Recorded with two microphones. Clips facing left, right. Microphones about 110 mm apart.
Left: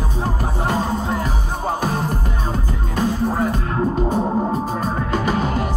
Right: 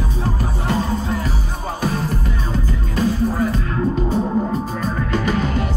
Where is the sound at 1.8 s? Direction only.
45° left (ahead or behind).